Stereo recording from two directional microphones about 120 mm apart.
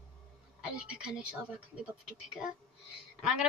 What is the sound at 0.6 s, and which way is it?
Speech, 5° right (ahead or behind).